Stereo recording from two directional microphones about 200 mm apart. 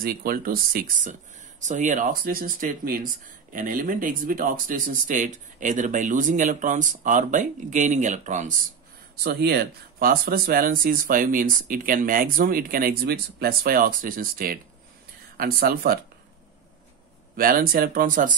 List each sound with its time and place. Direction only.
0.0 s speech: 45° right (ahead or behind)
9.1 s speech: 50° right (ahead or behind)
17.4 s speech: 45° right (ahead or behind)